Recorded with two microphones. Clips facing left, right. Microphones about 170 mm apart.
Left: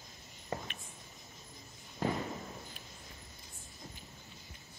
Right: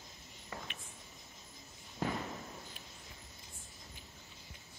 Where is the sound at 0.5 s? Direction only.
30° left (ahead or behind).